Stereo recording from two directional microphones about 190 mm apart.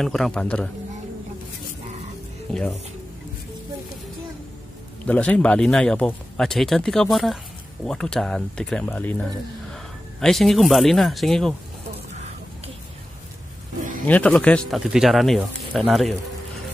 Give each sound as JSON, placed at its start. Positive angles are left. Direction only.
{"t": 0.0, "sound": "speech", "side_deg": 0}
{"t": 2.5, "sound": "speech", "side_deg": 5}
{"t": 5.0, "sound": "speech", "side_deg": 5}
{"t": 10.2, "sound": "speech", "side_deg": 0}
{"t": 12.1, "sound": "a sound", "side_deg": -35}
{"t": 14.0, "sound": "speech", "side_deg": 5}